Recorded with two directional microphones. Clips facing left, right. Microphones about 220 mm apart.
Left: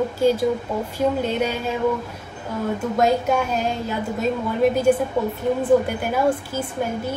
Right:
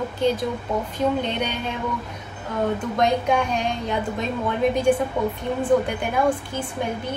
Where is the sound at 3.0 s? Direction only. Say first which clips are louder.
Left 2 dB; 5° left (ahead or behind).